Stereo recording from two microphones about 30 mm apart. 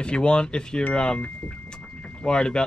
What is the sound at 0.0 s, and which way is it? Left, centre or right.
Speech, left.